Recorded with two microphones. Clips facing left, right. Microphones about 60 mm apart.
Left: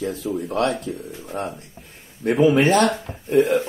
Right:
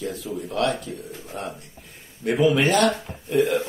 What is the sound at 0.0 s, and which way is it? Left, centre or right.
Speech, left.